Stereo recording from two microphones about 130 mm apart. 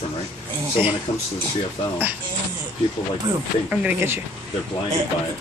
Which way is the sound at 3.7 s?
10° right (ahead or behind).